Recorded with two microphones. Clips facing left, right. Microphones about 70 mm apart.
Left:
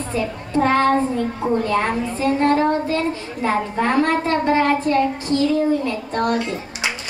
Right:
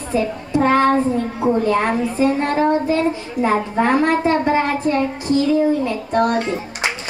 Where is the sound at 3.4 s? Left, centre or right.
Centre.